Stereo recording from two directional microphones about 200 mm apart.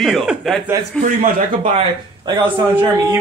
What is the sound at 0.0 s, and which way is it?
Speech, centre (ahead or behind).